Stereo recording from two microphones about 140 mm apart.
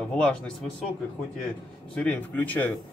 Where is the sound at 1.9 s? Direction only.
10° left (ahead or behind).